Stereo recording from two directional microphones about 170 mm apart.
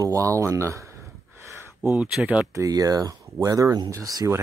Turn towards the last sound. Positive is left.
turn(degrees=-20)  # may be behind; listen again after turning